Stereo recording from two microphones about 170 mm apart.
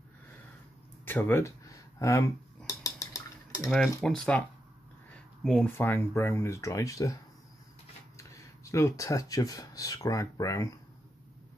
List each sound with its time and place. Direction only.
1.0 s speech: 10° left (ahead or behind)
2.0 s cutlery: 15° left (ahead or behind)
4.0 s speech: 5° left (ahead or behind)
8.2 s speech: 20° left (ahead or behind)